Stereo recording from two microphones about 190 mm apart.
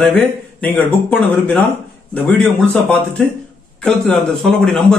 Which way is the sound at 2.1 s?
5° left (ahead or behind).